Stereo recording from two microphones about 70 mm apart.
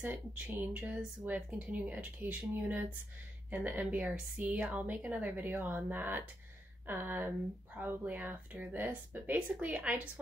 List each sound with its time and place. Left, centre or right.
0.0 s speech: right